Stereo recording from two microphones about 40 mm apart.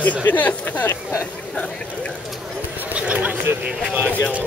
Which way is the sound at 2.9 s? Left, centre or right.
Right.